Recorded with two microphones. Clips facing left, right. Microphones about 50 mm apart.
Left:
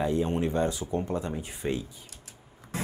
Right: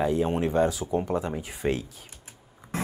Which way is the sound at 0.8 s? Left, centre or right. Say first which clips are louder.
Right 3 dB; right.